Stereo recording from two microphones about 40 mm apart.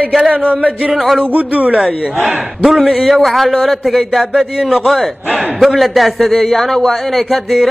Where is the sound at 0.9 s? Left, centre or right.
Centre.